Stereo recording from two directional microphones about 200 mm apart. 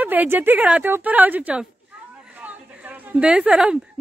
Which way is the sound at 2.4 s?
5° right (ahead or behind).